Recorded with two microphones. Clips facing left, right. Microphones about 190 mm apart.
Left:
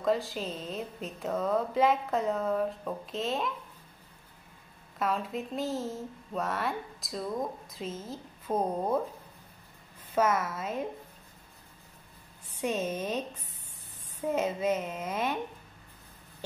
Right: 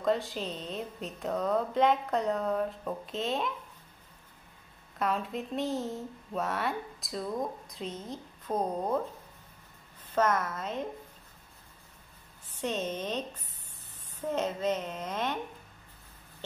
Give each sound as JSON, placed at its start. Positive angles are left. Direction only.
{"t": 0.0, "sound": "speech", "side_deg": 0}
{"t": 4.9, "sound": "speech", "side_deg": 0}
{"t": 10.1, "sound": "a woman's voice", "side_deg": 10}
{"t": 12.5, "sound": "a woman's voice", "side_deg": 10}
{"t": 14.2, "sound": "a woman's voice", "side_deg": 10}